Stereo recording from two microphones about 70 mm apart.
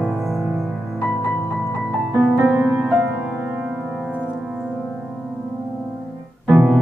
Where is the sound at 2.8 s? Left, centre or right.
Right.